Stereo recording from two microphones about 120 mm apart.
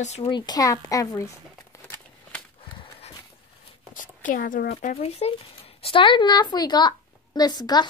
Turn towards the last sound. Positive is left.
turn(degrees=35)  # may be behind; listen again after turning